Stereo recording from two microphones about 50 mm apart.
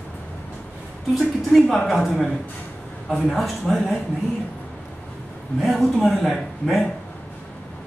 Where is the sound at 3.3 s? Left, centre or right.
Centre.